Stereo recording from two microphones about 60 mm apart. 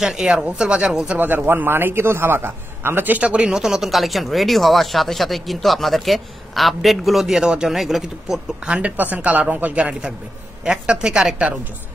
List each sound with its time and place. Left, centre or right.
0.0 s speech: centre
1.1 s a man's voice: right
3.2 s a man's voice: right
3.4 s speech: centre
8.6 s a man's voice: right